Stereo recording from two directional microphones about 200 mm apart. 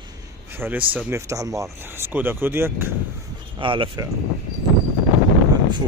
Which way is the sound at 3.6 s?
25° right (ahead or behind).